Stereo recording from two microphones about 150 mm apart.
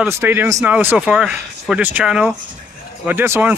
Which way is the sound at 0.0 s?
15° right (ahead or behind).